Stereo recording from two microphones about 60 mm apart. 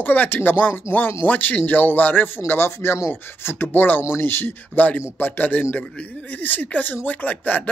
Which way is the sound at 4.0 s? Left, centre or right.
Left.